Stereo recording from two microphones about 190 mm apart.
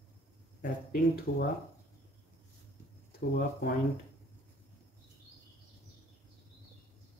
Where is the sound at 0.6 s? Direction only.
50° left (ahead or behind).